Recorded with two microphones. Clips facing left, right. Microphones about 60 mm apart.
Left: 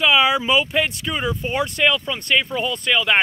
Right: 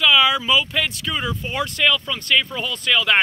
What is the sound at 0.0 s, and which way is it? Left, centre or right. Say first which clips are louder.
Speech: even; left.